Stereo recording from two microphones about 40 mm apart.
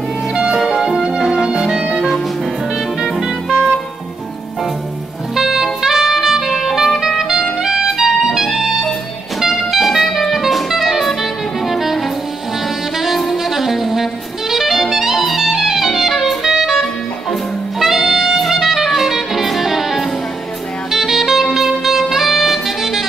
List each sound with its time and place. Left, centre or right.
0.3 s music: right
0.6 s music: centre; by 2.0 s right
3.0 s music: centre
5.3 s saxophone: centre
7.1 s music: centre
7.6 s clarinet: centre
9.4 s music: centre
13.2 s saxophone: centre
14.5 s music: centre
20.9 s saxophone: centre